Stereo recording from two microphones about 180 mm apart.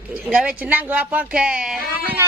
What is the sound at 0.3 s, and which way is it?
Speech, 5° right (ahead or behind).